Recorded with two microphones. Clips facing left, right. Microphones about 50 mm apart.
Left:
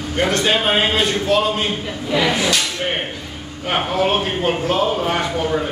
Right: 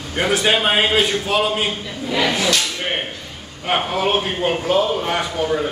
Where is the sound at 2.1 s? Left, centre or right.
Centre.